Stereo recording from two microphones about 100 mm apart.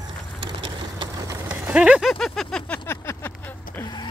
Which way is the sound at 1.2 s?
40° right (ahead or behind).